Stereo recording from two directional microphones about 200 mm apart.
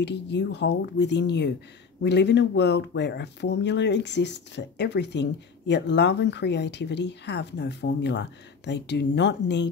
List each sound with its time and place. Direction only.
0.0 s speech: 60° left (ahead or behind)